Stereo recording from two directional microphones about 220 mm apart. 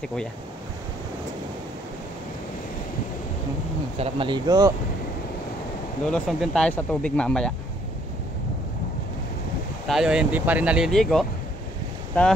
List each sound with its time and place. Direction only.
0.0 s speech: 5° left (ahead or behind)
4.0 s speech: 20° right (ahead or behind)
6.0 s speech: centre (ahead or behind)
9.8 s speech: 5° right (ahead or behind)